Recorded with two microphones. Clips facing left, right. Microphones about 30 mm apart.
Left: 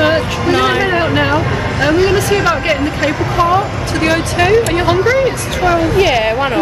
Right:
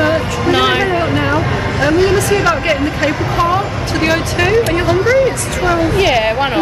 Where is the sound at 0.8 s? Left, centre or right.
Left; by 4.6 s centre.